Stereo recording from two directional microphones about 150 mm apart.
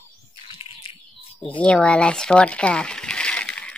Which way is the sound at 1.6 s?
5° left (ahead or behind).